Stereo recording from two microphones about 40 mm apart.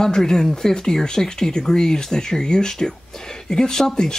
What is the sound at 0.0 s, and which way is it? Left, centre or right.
Speech, centre.